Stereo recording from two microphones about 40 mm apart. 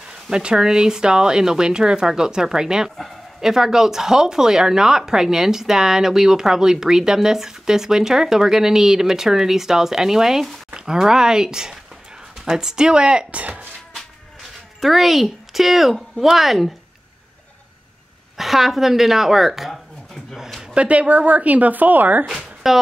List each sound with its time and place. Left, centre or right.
0.3 s speech: right
13.3 s speech: right
14.8 s speech: centre
18.4 s speech: centre
20.7 s speech: right
22.6 s speech: centre